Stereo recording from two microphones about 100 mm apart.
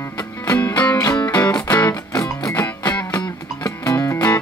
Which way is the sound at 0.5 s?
15° left (ahead or behind).